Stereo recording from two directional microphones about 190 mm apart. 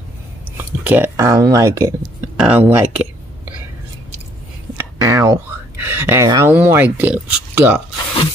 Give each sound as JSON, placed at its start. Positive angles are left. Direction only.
{"t": 0.6, "sound": "speech", "side_deg": -10}
{"t": 4.7, "sound": "speech", "side_deg": -15}